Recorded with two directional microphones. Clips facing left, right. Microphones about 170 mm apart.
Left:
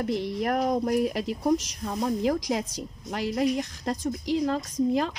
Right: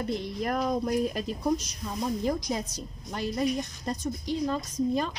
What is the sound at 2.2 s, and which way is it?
A woman's voice, 90° left.